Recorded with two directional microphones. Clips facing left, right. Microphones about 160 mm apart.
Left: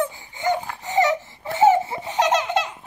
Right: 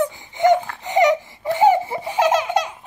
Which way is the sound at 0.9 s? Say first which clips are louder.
Right 4 dB; 15° right (ahead or behind).